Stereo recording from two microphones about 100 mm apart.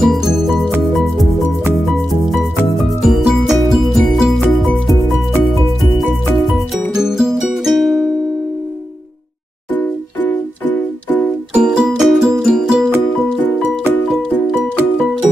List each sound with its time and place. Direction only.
0.0 s music: 5° right (ahead or behind)
1.9 s music: centre (ahead or behind)
7.0 s music: 5° right (ahead or behind)
9.8 s music: 15° left (ahead or behind)
11.5 s music: 10° right (ahead or behind)